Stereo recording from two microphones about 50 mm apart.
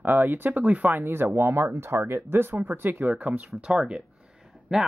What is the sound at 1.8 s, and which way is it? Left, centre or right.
Speech, right.